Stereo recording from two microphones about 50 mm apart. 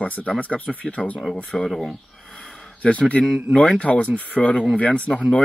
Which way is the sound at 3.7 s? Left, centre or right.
Left.